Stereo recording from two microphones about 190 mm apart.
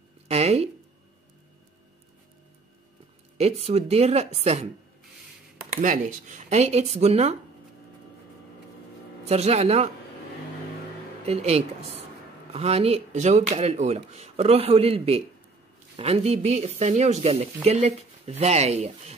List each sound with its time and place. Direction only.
0.3 s speech: 35° right (ahead or behind)
3.3 s speech: 35° right (ahead or behind)
5.8 s speech: 45° right (ahead or behind)
9.2 s speech: 35° right (ahead or behind)
11.2 s speech: 30° right (ahead or behind)